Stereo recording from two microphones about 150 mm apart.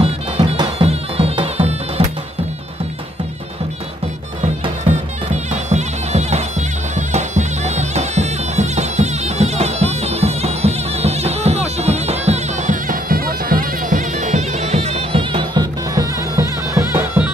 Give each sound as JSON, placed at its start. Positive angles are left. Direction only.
{"t": 0.7, "sound": "music", "side_deg": -40}
{"t": 4.8, "sound": "music", "side_deg": -50}
{"t": 15.9, "sound": "bagpipes", "side_deg": -20}